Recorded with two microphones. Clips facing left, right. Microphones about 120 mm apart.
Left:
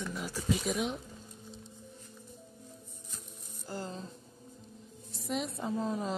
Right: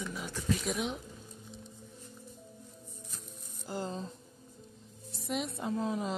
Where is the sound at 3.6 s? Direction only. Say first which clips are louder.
Right 3 dB; 20° right (ahead or behind).